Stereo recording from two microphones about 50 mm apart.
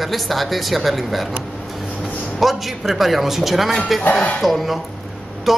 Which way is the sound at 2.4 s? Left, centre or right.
Centre.